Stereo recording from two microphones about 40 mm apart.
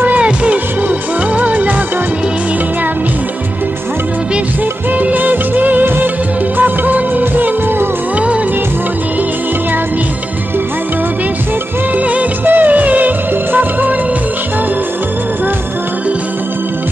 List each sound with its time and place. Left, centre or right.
1.3 s music: right
5.0 s music of bollywood: right
12.4 s music: right